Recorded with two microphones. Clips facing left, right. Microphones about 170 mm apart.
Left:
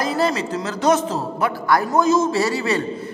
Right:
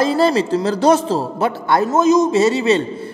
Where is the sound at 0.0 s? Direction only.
30° right (ahead or behind).